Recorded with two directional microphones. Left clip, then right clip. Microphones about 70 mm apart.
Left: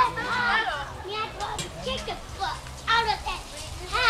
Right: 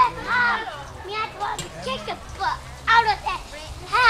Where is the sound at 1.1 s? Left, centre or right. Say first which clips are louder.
Right 5 dB; right.